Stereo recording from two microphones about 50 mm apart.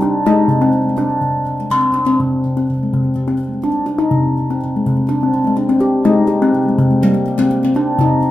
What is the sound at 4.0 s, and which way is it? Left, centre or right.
Music, centre.